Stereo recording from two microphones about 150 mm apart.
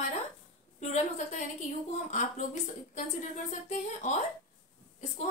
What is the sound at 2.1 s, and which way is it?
Speech, 55° left (ahead or behind).